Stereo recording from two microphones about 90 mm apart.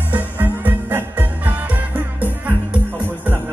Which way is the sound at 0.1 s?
20° right (ahead or behind).